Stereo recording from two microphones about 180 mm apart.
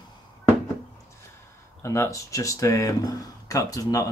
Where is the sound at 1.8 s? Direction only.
15° left (ahead or behind).